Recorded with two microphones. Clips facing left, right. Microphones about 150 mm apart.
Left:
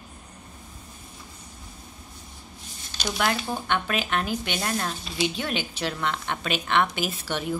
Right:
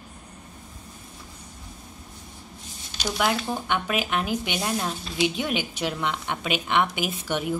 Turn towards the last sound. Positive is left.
turn(degrees=-10)  # may be behind; listen again after turning